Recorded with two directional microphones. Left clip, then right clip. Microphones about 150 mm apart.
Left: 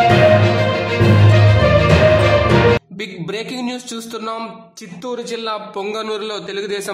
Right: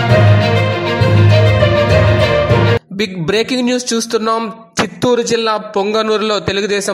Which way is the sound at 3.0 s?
40° right (ahead or behind).